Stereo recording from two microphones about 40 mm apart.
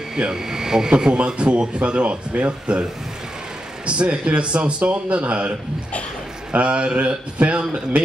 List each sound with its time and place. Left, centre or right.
0.1 s speech: centre
6.5 s speech: right